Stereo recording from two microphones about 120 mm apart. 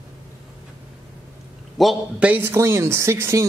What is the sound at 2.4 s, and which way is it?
Speech, 20° right (ahead or behind).